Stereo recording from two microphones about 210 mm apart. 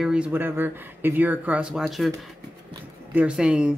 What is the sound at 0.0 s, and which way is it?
Speech, 5° right (ahead or behind).